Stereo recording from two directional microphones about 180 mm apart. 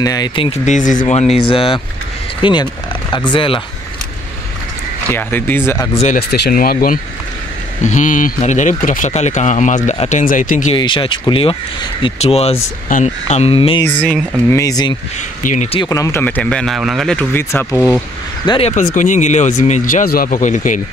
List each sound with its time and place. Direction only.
0.0 s speech: 20° left (ahead or behind)
0.5 s speech: 45° left (ahead or behind)
5.1 s speech: 10° left (ahead or behind)
6.1 s speech: 65° left (ahead or behind)
7.8 s speech: 45° left (ahead or behind)
10.7 s speech: 30° left (ahead or behind)
14.5 s speech: 20° left (ahead or behind)
15.4 s speech: 40° left (ahead or behind)
15.8 s speech: 20° left (ahead or behind)
18.5 s speech: 35° left (ahead or behind)